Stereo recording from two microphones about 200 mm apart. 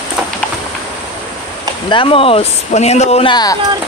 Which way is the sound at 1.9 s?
25° left (ahead or behind).